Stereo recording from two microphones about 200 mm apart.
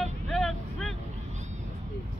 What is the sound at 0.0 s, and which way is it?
Vehicle, centre (ahead or behind).